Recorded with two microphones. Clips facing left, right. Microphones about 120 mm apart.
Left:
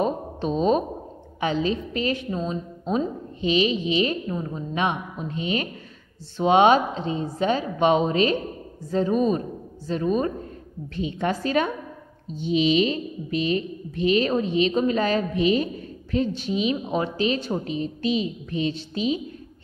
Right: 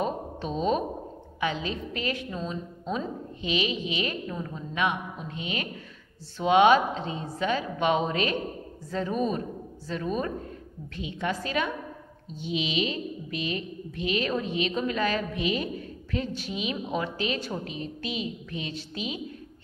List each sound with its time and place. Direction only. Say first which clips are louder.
0.0 s a sound: left 5 dB; 30° left (ahead or behind)
1.4 s a woman's voice: left 6 dB; 30° left (ahead or behind)
11.0 s a woman's voice: left 5 dB; 40° left (ahead or behind)